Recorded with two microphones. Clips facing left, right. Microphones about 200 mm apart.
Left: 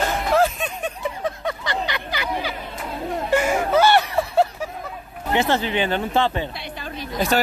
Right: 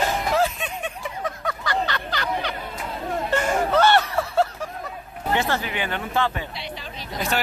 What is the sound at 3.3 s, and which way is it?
Music, 10° left (ahead or behind).